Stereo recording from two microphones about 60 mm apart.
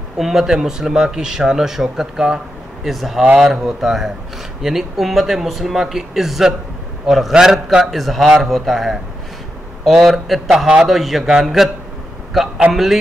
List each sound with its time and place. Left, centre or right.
0.2 s speech: centre
12.7 s a man's voice: right